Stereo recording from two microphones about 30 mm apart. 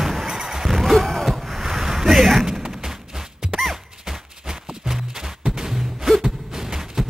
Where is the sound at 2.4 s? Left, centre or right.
Centre.